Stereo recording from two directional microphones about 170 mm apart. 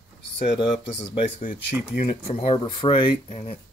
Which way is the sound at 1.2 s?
45° left (ahead or behind).